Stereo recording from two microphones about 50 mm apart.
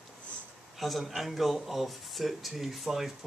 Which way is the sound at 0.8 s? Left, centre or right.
Centre.